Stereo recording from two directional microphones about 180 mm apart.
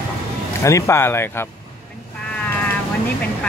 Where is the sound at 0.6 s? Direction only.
15° left (ahead or behind).